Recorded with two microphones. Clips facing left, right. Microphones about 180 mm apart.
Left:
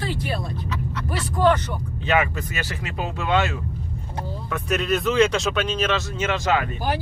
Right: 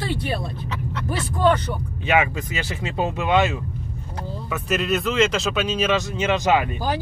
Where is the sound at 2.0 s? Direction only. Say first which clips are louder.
Right 1 dB; 15° right (ahead or behind).